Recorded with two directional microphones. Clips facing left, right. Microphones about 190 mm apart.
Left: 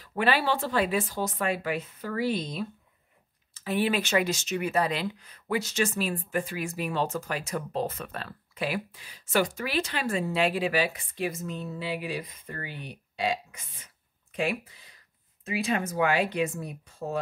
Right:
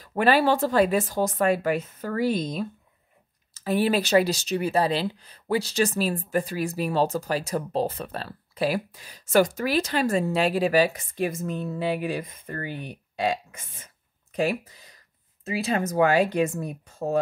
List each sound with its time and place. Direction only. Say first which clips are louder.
0.0 s speech: right 5 dB; 45° right (ahead or behind)